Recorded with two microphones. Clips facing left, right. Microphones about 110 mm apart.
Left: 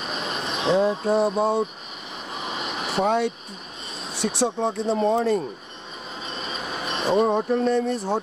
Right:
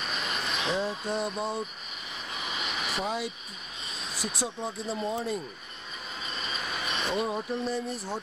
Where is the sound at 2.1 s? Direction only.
40° left (ahead or behind).